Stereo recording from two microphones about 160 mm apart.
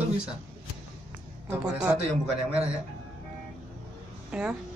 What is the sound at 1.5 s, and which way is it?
Speech, 15° right (ahead or behind).